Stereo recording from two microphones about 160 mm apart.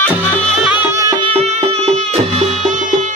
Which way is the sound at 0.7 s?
15° right (ahead or behind).